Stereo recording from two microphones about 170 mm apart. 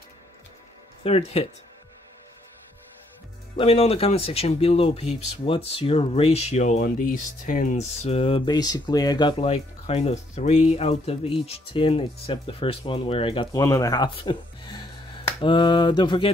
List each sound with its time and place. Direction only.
1.0 s speech: 35° left (ahead or behind)
3.5 s speech: 35° left (ahead or behind)
9.5 s speech: 40° left (ahead or behind)
13.5 s speech: 20° left (ahead or behind)
15.4 s mantra: 30° left (ahead or behind)